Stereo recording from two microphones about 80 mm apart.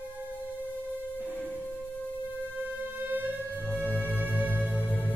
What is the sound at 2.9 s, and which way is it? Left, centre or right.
Music, right.